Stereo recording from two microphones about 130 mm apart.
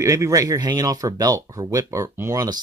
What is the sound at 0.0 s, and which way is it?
Speech, 25° right (ahead or behind).